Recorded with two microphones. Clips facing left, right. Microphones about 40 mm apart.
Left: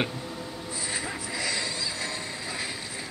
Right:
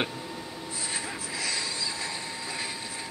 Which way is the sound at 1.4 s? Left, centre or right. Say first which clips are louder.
Left 2 dB; left.